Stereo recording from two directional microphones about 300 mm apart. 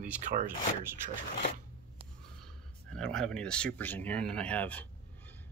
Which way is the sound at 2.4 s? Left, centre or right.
Centre.